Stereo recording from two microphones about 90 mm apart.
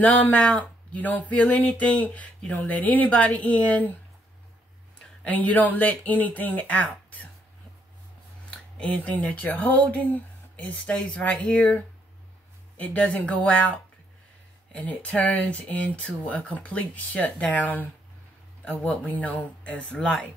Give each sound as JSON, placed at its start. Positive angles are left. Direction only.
{"t": 0.0, "sound": "speech", "side_deg": 15}
{"t": 5.2, "sound": "speech", "side_deg": 15}
{"t": 8.5, "sound": "speech", "side_deg": 15}
{"t": 14.7, "sound": "speech", "side_deg": 15}
{"t": 18.9, "sound": "speech", "side_deg": 15}